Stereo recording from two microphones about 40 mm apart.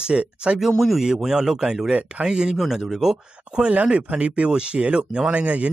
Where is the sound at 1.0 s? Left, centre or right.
Centre.